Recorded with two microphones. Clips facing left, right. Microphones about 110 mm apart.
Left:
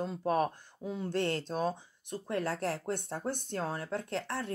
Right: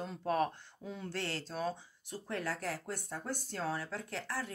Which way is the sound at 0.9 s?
20° left (ahead or behind).